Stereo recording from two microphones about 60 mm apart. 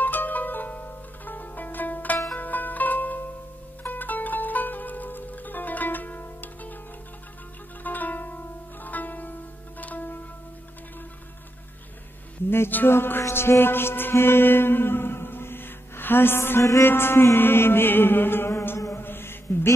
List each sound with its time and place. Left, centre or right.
0.0 s zither: left
3.8 s music: left
7.8 s music: left
12.4 s mantra: left